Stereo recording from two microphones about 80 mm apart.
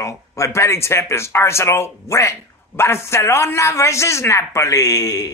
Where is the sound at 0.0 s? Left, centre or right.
Left.